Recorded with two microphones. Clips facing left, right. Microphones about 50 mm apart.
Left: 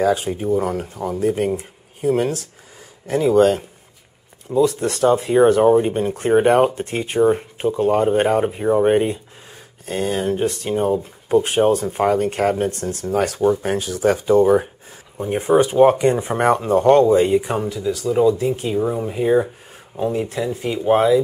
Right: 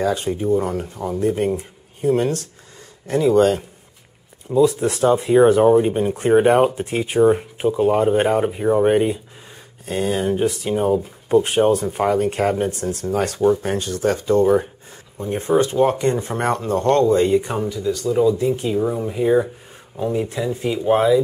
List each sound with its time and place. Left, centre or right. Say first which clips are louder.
0.0 s speech: left 2 dB; centre
15.1 s speech: left 2 dB; left; by 21.2 s centre